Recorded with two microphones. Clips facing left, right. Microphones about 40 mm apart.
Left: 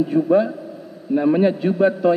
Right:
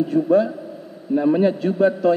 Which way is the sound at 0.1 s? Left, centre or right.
Centre.